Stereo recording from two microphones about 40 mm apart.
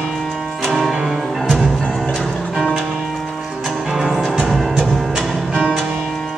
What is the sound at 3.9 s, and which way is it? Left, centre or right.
Music, centre.